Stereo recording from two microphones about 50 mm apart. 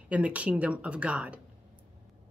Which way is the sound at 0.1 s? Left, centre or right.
Right.